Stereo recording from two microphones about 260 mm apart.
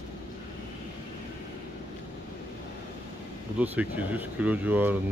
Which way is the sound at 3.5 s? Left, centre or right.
Centre.